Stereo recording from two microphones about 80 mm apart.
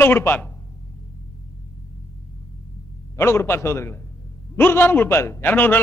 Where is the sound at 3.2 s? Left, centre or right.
Left.